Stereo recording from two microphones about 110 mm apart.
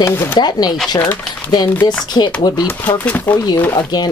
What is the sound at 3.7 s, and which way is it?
Speech, 40° left (ahead or behind).